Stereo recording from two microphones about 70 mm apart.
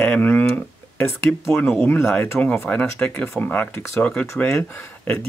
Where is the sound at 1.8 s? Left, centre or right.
Left.